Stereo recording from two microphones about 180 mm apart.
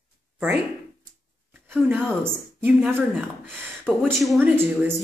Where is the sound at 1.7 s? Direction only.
10° right (ahead or behind).